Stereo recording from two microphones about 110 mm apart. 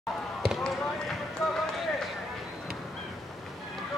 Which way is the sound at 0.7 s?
5° left (ahead or behind).